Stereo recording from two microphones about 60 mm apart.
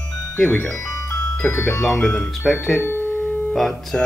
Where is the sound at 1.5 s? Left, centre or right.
Left.